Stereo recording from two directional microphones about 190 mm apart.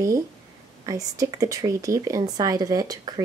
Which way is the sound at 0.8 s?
15° right (ahead or behind).